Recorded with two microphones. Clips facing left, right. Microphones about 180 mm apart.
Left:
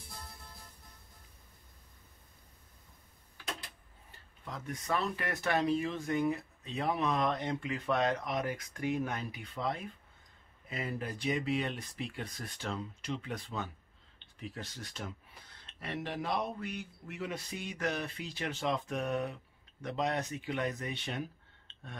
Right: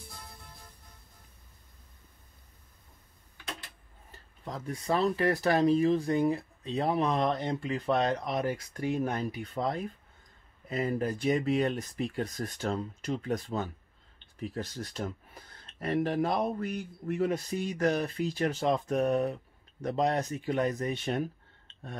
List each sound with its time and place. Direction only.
4.1 s speech: 35° right (ahead or behind)